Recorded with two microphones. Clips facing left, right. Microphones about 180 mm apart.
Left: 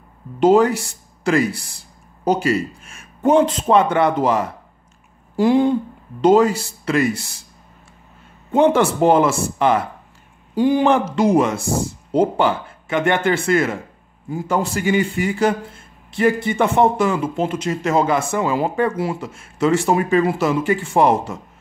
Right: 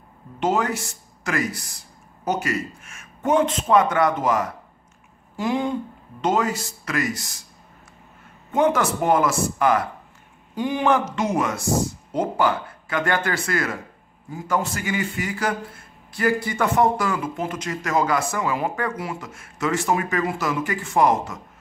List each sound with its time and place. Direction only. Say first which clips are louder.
0.4 s a man's voice: left 9 dB; 30° left (ahead or behind)
8.5 s a man's voice: left 5 dB; 30° left (ahead or behind)